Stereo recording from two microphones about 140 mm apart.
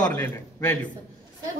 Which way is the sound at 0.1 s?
20° left (ahead or behind).